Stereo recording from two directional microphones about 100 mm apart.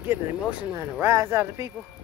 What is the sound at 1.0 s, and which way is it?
Speech, 25° right (ahead or behind).